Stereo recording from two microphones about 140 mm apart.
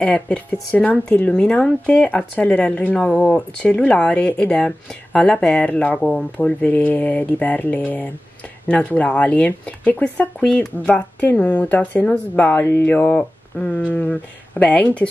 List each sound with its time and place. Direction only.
0.0 s speech: 10° left (ahead or behind)